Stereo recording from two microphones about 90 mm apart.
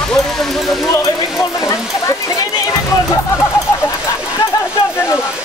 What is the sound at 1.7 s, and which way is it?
Waterfall, 40° left (ahead or behind).